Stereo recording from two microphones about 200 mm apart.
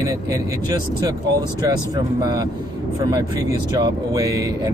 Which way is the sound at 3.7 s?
20° right (ahead or behind).